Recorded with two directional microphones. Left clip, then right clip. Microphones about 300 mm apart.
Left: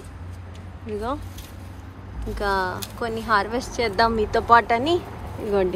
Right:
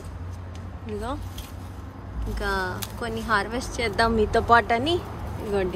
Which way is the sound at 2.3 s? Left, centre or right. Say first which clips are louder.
Left 4 dB; centre.